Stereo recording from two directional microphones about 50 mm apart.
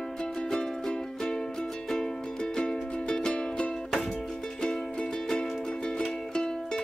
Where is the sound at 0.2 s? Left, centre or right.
Centre.